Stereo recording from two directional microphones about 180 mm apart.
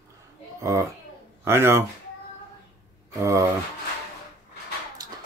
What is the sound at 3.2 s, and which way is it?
Speech, 15° right (ahead or behind).